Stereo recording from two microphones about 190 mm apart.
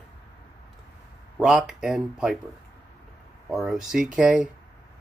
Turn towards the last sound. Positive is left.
turn(degrees=-5)  # may be behind; listen again after turning